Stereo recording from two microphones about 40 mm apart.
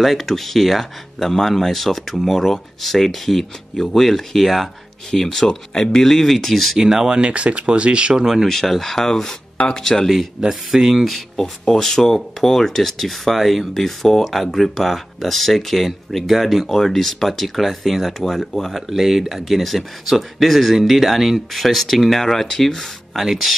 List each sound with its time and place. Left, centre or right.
0.0 s speech: centre
6.8 s speech: centre
8.5 s speech: centre
10.5 s speech: centre
11.1 s speech: centre
23.1 s speech: centre